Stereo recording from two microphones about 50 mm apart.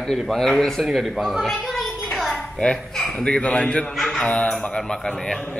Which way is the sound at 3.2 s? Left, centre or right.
Left.